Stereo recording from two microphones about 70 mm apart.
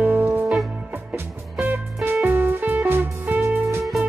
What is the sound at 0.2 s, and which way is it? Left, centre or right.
Music, right.